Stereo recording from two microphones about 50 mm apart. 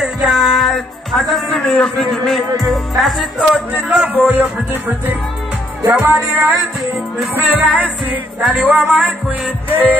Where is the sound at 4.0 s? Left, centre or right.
Right.